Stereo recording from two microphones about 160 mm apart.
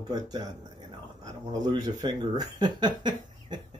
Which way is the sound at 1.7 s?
25° right (ahead or behind).